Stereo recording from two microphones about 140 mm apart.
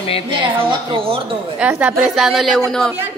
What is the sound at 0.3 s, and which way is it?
Speech, 40° right (ahead or behind).